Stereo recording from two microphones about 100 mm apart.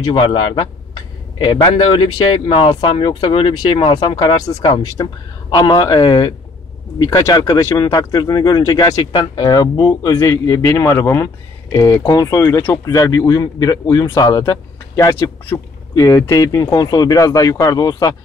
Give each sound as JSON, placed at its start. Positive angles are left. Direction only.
{"t": 0.1, "sound": "speech", "side_deg": 55}
{"t": 4.5, "sound": "speech", "side_deg": 35}
{"t": 5.5, "sound": "a man's voice", "side_deg": 45}